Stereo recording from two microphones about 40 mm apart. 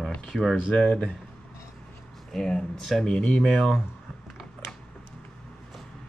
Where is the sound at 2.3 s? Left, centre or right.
Centre.